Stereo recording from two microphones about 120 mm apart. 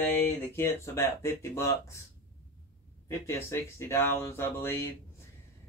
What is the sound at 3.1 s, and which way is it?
Speech, 20° left (ahead or behind).